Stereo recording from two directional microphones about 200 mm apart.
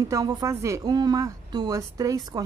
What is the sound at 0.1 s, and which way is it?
A woman's voice, 15° right (ahead or behind).